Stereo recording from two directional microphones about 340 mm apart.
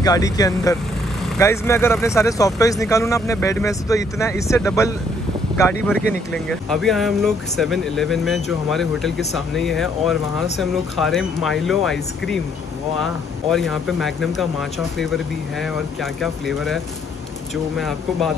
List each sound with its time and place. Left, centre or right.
0.0 s speech: centre